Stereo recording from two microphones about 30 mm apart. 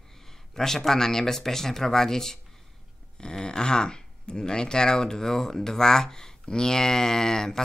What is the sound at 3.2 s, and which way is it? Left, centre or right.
Speech, left.